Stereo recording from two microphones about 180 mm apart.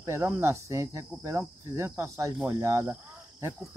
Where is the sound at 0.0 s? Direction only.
15° right (ahead or behind).